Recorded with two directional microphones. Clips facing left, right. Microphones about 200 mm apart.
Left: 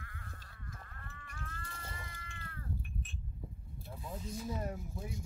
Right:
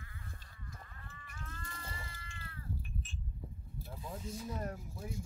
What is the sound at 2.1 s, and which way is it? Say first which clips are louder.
Cat: left 1 dB; 55° left (ahead or behind).